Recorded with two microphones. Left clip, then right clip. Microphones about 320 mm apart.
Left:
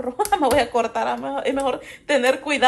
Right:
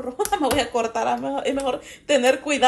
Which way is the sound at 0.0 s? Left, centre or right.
Centre.